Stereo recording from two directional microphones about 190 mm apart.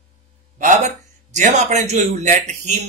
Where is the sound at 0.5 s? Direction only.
45° right (ahead or behind).